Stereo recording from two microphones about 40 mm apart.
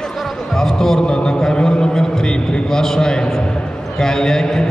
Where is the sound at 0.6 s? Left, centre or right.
Centre.